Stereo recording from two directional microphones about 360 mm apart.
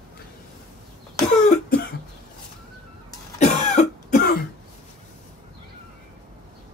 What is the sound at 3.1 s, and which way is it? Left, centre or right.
Cough, centre.